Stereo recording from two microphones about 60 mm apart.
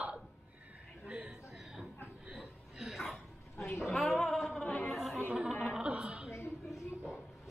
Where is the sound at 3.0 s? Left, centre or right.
Centre.